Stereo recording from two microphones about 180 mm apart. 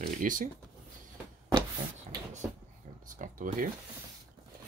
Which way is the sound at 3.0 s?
45° right (ahead or behind).